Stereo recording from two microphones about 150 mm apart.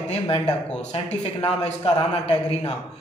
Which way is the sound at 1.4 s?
40° left (ahead or behind).